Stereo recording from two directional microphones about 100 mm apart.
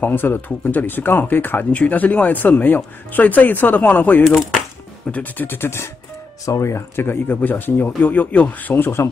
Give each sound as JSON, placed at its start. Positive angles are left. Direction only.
{"t": 0.0, "sound": "speech", "side_deg": 20}